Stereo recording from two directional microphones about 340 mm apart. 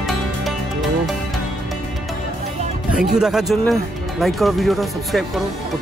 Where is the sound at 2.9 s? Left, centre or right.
Centre.